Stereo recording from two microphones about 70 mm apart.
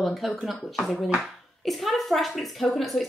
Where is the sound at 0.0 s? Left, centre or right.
Centre.